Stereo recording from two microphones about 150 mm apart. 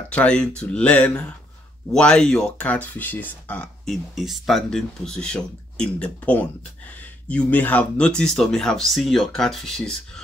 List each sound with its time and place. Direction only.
0.1 s speech: 10° left (ahead or behind)